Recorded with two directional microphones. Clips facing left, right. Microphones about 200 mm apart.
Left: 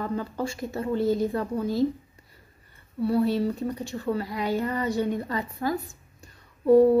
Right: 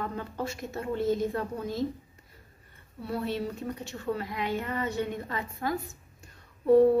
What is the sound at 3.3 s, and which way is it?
Speech, 35° left (ahead or behind).